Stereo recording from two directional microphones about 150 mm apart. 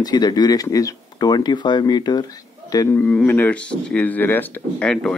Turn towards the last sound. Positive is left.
turn(degrees=5)  # may be behind; listen again after turning